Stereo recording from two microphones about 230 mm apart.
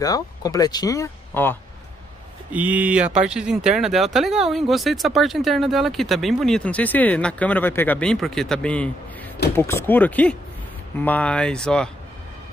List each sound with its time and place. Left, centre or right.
0.0 s speech: centre
2.5 s speech: centre